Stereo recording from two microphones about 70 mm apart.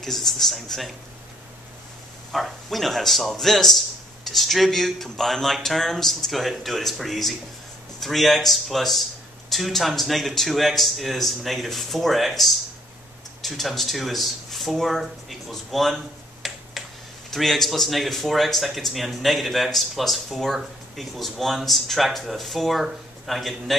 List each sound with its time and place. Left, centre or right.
0.0 s speech: centre
2.3 s speech: centre
16.4 s a sound: centre
17.3 s speech: centre